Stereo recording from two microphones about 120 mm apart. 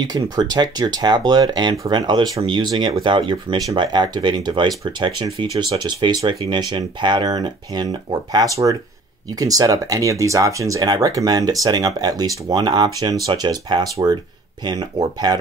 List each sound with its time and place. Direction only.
0.0 s speech: 35° right (ahead or behind)